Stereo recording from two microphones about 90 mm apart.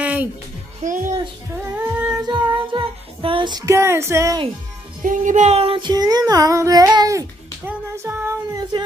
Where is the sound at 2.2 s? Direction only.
65° right (ahead or behind).